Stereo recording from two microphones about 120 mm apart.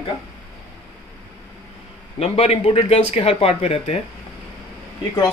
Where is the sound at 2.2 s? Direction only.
55° left (ahead or behind).